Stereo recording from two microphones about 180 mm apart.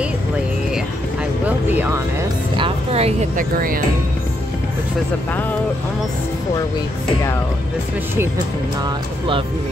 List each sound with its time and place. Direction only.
1.7 s music: 10° right (ahead or behind)
2.5 s music: 30° right (ahead or behind)
3.3 s speech: 50° right (ahead or behind)